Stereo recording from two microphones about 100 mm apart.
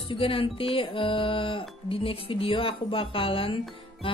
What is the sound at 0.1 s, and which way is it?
Speech, 65° left (ahead or behind).